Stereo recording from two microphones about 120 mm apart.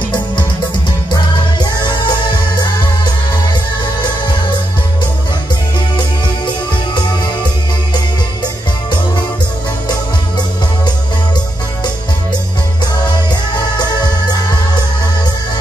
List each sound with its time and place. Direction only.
1.1 s music: 40° left (ahead or behind)
13.7 s music: 35° left (ahead or behind)